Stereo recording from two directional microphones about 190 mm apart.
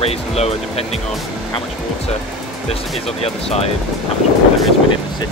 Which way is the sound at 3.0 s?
30° left (ahead or behind).